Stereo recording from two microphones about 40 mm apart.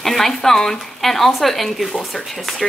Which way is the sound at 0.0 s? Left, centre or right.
Centre.